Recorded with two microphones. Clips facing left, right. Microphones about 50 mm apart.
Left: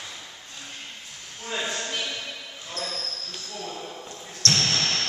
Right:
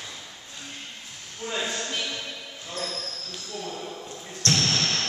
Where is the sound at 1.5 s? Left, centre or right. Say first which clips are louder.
Even; centre.